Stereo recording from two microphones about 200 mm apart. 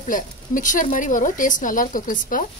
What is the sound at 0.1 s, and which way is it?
A woman's voice, 40° left (ahead or behind).